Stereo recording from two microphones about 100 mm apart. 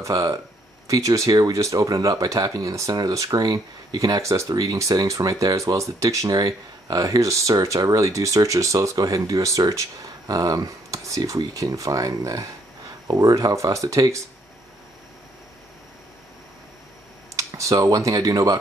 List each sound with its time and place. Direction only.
0.0 s speech: 35° right (ahead or behind)
17.4 s speech: 35° right (ahead or behind)